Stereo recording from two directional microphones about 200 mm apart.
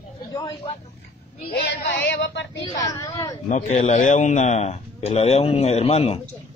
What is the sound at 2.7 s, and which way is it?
Speech, 20° left (ahead or behind).